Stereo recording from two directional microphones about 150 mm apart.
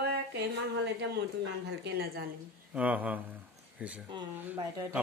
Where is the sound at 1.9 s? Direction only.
90° right.